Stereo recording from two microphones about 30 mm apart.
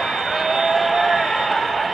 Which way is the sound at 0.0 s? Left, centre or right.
Centre.